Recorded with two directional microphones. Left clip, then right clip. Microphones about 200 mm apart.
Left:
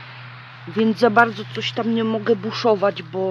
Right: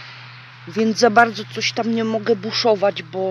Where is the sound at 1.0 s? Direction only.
10° right (ahead or behind).